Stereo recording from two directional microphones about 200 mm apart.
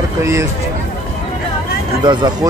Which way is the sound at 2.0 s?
20° right (ahead or behind).